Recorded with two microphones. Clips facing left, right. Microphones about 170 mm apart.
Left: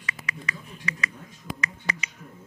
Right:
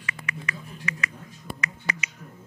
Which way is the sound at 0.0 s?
35° left (ahead or behind).